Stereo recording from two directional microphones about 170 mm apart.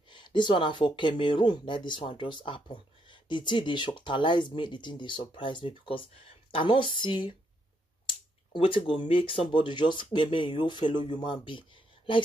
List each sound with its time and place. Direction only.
0.1 s speech: 30° left (ahead or behind)
8.5 s speech: 30° left (ahead or behind)